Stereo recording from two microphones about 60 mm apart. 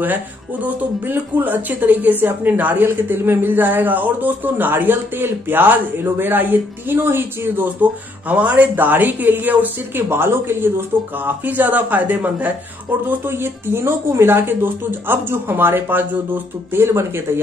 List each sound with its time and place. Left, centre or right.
0.0 s speech: right
10.0 s a man's voice: right
13.1 s speech: right